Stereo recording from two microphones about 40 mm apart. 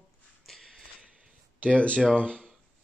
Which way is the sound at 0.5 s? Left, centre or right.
Centre.